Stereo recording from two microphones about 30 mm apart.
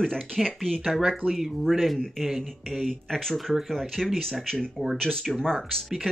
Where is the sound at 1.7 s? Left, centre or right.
Centre.